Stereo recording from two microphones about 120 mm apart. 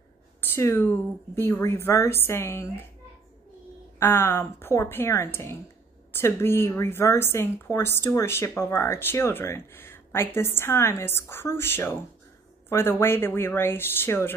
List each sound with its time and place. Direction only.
0.4 s a woman's voice: 20° left (ahead or behind)
4.0 s a woman's voice: 20° left (ahead or behind)